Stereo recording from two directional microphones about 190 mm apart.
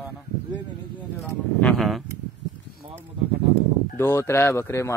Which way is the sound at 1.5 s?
5° left (ahead or behind).